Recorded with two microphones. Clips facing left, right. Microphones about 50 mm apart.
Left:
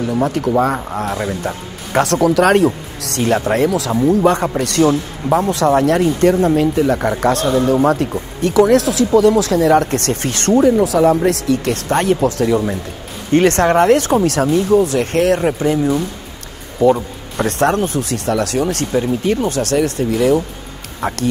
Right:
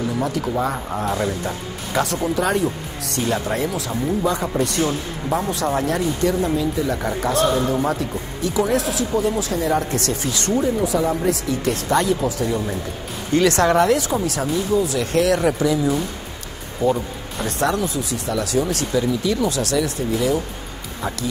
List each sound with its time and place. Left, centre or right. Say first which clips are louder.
0.0 s speech: left 5 dB; left
2.0 s speech: left 8 dB; left
3.3 s speech: left 7 dB; left
3.6 s speech: left 8 dB; left
4.1 s speech: left 7 dB; left
5.5 s speech: left 8 dB; left
7.5 s speech: left 7 dB; left
13.3 s speech: left 4 dB; left
16.8 s speech: left 7 dB; left